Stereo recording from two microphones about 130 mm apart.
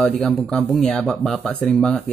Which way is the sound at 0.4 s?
5° left (ahead or behind).